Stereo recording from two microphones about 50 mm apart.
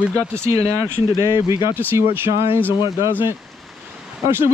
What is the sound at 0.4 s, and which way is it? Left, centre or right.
Speech, right.